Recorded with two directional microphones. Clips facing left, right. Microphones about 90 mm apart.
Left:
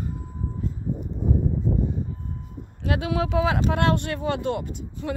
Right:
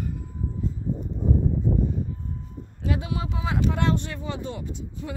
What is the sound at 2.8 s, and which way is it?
Speech, 80° left.